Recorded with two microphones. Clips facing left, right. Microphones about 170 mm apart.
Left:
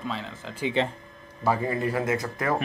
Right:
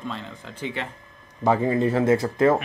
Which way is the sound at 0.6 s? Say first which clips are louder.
Left 5 dB; 25° left (ahead or behind).